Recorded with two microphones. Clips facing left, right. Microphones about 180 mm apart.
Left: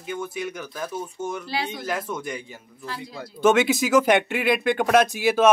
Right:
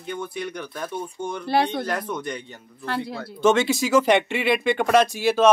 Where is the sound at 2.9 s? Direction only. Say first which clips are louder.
Right 8 dB; 65° right (ahead or behind).